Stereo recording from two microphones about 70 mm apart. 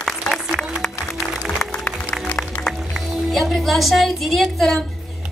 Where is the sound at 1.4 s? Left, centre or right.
Centre.